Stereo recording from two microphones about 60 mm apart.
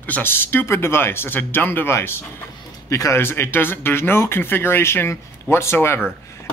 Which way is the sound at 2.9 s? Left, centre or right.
Left.